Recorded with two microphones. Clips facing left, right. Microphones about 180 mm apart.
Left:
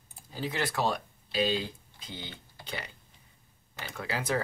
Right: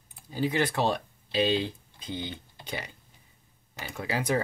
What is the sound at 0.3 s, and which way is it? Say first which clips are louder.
Speech: right 6 dB; 15° right (ahead or behind).